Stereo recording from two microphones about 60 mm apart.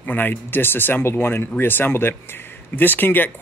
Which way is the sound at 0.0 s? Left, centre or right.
Left.